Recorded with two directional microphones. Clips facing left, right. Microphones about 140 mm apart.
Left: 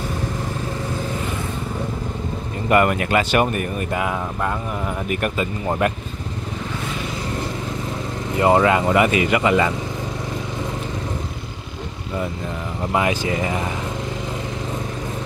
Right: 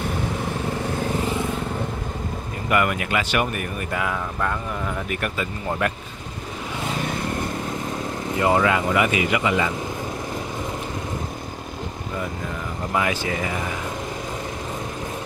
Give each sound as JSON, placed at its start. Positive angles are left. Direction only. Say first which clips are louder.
{"t": 2.7, "sound": "speech", "louder": "left 5 dB", "side_deg": 35}
{"t": 8.4, "sound": "speech", "louder": "left 4 dB", "side_deg": 30}